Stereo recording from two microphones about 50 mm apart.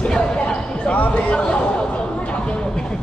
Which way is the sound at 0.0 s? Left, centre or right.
Centre.